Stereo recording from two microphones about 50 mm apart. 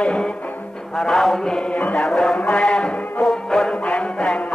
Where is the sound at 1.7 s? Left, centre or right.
Left.